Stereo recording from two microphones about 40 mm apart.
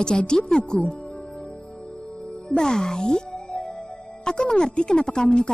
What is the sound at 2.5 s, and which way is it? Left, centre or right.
Speech, centre.